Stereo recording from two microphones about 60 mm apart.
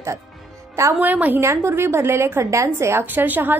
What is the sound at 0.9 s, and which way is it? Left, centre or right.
Speech, right.